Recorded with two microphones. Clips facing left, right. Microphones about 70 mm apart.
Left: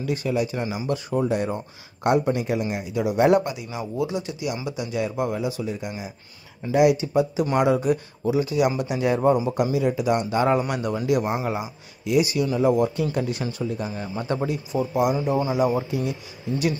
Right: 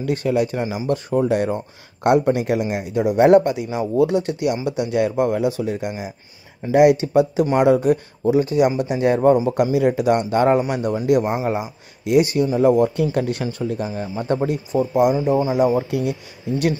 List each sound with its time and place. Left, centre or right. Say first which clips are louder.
0.0 s speech: right 5 dB; right
3.2 s speech: right 6 dB; right
7.6 s speech: right 5 dB; right
9.6 s speech: right 5 dB; right
12.0 s speech: right 5 dB; right
13.1 s speech: right 4 dB; right
15.1 s speech: right 4 dB; right
15.9 s speech: right 4 dB; right